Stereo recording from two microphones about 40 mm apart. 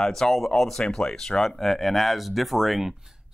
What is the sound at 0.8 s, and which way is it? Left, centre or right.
Speech, left.